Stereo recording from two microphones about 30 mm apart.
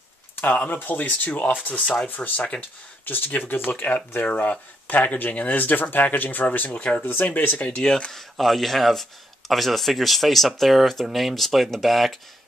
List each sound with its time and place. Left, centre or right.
0.5 s speech: left
1.5 s speech: left
2.0 s speech: left
6.8 s speech: left
7.1 s speech: left
7.6 s speech: left
8.1 s speech: centre